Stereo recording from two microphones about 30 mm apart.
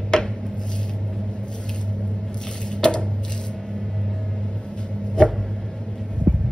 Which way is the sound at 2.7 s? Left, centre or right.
Left.